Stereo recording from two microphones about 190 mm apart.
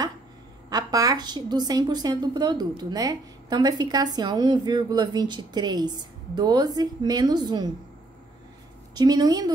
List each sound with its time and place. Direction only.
0.7 s a woman's voice: 20° right (ahead or behind)
8.9 s a woman's voice: 20° right (ahead or behind)